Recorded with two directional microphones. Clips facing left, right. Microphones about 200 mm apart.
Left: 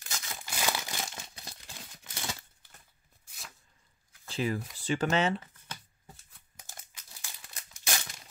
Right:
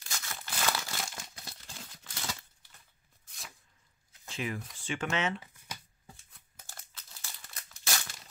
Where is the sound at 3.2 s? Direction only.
5° left (ahead or behind).